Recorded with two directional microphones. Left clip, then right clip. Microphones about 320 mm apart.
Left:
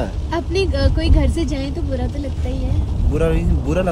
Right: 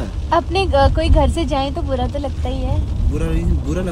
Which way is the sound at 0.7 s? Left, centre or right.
Right.